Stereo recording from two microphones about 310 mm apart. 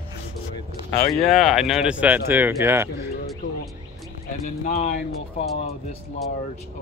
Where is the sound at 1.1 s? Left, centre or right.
Centre.